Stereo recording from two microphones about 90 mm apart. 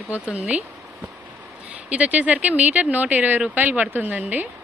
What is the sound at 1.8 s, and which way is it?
Speech, 15° right (ahead or behind).